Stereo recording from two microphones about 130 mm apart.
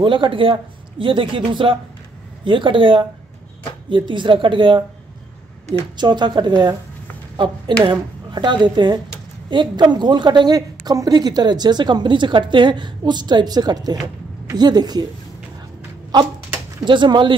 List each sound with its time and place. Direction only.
0.0 s a woman's voice: 40° right (ahead or behind)
5.9 s a woman's voice: 35° right (ahead or behind)
16.8 s a woman's voice: 35° right (ahead or behind)